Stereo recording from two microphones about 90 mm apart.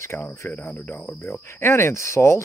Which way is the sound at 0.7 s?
20° left (ahead or behind).